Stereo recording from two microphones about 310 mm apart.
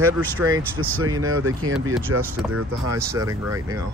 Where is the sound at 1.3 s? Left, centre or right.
Right.